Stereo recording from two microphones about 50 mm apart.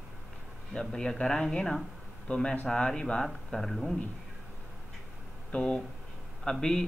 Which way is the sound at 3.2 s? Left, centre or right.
Centre.